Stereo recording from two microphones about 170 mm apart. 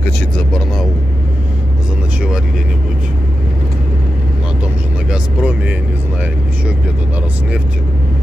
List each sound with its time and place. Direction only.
5.1 s vehicle: 5° right (ahead or behind)